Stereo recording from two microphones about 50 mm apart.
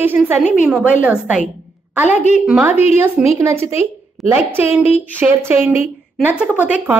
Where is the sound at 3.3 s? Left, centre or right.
Right.